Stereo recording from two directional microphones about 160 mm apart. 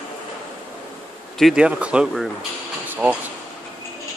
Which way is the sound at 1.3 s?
Centre (ahead or behind).